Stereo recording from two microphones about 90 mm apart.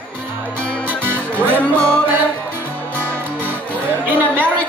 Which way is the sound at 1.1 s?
20° left (ahead or behind).